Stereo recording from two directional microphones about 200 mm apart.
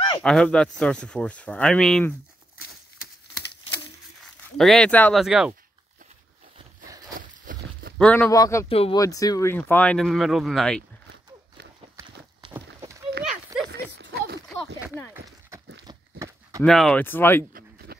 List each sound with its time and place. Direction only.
0.2 s speech: 5° left (ahead or behind)
4.6 s speech: centre (ahead or behind)
7.2 s a sound: 45° right (ahead or behind)
8.0 s speech: 10° left (ahead or behind)
8.6 s speech: 30° left (ahead or behind)
9.0 s speech: 15° left (ahead or behind); by 10.8 s centre (ahead or behind)
12.0 s clip-clop: 25° right (ahead or behind)
13.5 s horse: 20° right (ahead or behind)
13.9 s a sound: 50° right (ahead or behind)
15.9 s horse: 15° right (ahead or behind)
16.6 s speech: centre (ahead or behind)
17.5 s a sound: 50° right (ahead or behind)